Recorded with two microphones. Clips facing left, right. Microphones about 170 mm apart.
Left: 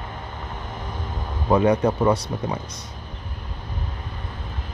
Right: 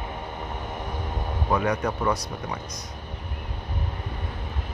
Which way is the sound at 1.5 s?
25° left (ahead or behind).